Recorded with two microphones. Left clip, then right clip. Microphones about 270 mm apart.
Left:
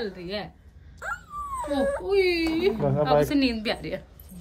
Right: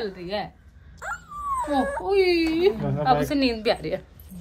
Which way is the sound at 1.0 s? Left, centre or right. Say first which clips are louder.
Right 2 dB; centre.